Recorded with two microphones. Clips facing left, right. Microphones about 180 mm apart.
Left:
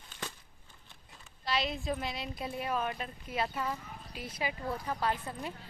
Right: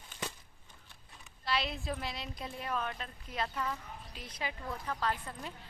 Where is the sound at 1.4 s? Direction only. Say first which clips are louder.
Left 2 dB; centre (ahead or behind).